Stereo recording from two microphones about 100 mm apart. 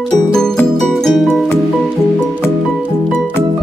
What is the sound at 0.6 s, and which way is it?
Music, 5° left (ahead or behind).